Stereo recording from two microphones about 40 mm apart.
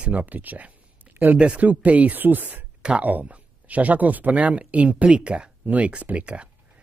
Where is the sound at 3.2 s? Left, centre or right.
Right.